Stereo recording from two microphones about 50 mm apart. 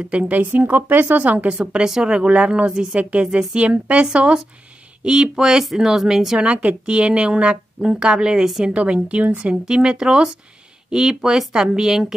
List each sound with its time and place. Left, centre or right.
0.0 s speech: right
1.5 s a woman's voice: centre
6.4 s a woman's voice: right; by 12.2 s centre